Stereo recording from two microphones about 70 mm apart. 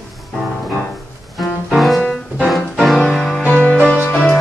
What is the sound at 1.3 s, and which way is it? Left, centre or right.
Music, centre.